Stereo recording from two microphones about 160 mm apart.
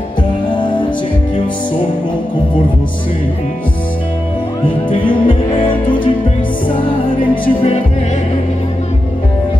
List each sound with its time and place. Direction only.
0.5 s music: 30° left (ahead or behind)
4.8 s music: 30° left (ahead or behind)
7.4 s music: 40° left (ahead or behind)